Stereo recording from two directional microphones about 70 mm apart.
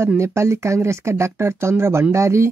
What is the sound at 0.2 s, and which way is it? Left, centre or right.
Speech, right.